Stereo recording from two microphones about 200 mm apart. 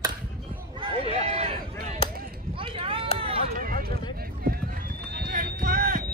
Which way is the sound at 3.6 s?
50° right (ahead or behind).